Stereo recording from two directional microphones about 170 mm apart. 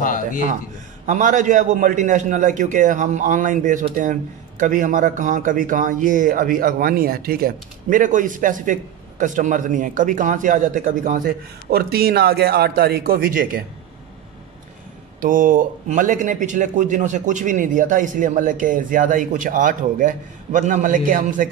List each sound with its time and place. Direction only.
0.0 s a sound: 50° left (ahead or behind)
1.0 s a man's voice: 45° right (ahead or behind)
15.1 s a man's voice: 50° right (ahead or behind)